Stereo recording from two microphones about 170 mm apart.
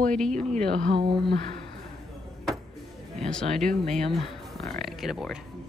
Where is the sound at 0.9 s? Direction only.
30° right (ahead or behind).